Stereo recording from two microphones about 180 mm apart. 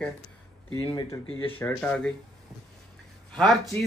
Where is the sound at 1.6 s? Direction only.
10° left (ahead or behind).